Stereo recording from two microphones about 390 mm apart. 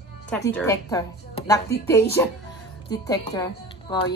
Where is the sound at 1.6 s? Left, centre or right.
Left.